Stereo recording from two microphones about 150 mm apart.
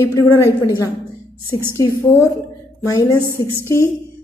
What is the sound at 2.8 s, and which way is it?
Speech, 20° left (ahead or behind).